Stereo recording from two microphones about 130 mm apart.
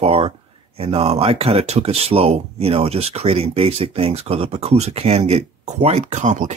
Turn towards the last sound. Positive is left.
turn(degrees=-70)  # may be behind; listen again after turning